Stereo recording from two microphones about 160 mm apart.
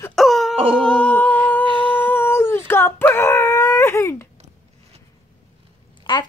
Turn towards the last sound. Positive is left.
turn(degrees=25)  # may be behind; listen again after turning